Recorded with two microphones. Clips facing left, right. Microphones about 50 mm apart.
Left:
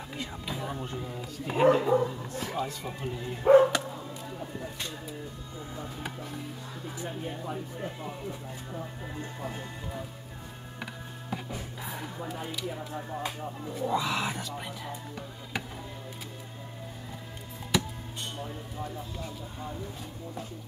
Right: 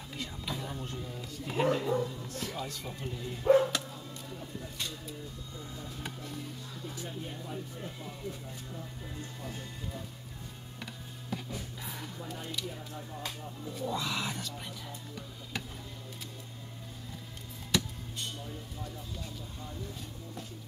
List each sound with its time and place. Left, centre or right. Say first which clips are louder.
0.2 s a sound: left 2 dB; centre
0.9 s speech: left 4 dB; left
2.3 s speech: left 5 dB; centre
3.8 s chop: left 6 dB; left
6.0 s speech: left 3 dB; centre
7.0 s speech: left 7 dB; left
10.8 s music: left 5 dB; left
12.3 s speech: left 3 dB; centre
12.7 s speech: left 7 dB; left
13.2 s speech: left 5 dB; left
17.7 s music: left 3 dB; centre
18.4 s speech: left 5 dB; left